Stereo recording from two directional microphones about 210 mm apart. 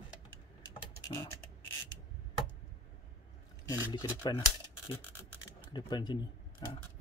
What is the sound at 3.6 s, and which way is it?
Speech, 15° left (ahead or behind).